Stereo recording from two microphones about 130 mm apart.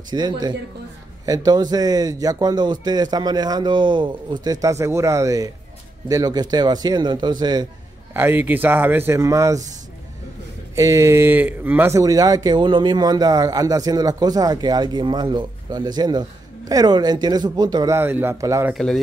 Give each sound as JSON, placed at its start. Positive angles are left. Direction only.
{"t": 0.1, "sound": "a man's voice", "side_deg": -35}
{"t": 8.1, "sound": "a man's voice", "side_deg": -15}
{"t": 10.8, "sound": "a man's voice", "side_deg": -25}
{"t": 12.0, "sound": "a man's voice", "side_deg": -25}
{"t": 17.9, "sound": "a man's voice", "side_deg": -15}
{"t": 18.7, "sound": "speech", "side_deg": 5}